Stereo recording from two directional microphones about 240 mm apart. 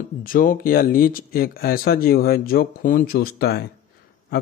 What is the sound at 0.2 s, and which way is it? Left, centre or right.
A man's voice, left.